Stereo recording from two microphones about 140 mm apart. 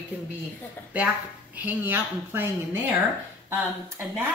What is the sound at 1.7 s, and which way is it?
Speech, 15° right (ahead or behind).